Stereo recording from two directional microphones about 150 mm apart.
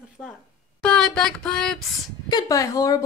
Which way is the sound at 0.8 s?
5° left (ahead or behind).